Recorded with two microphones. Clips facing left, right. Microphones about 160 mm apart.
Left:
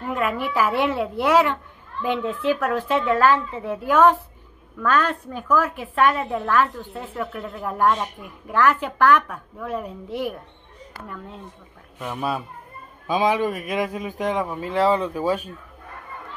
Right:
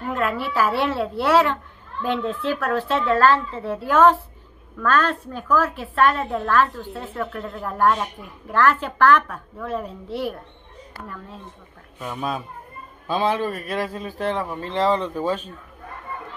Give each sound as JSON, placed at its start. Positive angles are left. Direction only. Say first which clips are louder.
{"t": 0.1, "sound": "a child's voice", "louder": "even", "side_deg": 15}
{"t": 12.1, "sound": "a child's voice", "louder": "left 1 dB", "side_deg": 5}